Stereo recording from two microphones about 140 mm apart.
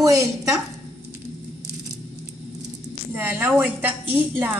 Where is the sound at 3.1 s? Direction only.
15° right (ahead or behind).